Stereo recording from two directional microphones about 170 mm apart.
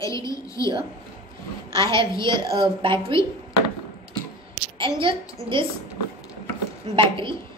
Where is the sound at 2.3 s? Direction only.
30° right (ahead or behind).